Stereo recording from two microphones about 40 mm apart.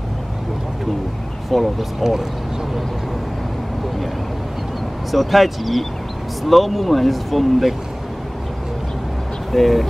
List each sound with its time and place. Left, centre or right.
1.5 s speech: centre
5.1 s speech: centre
9.5 s speech: centre